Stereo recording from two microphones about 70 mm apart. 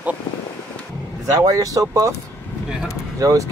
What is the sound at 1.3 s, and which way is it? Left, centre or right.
Speech, right.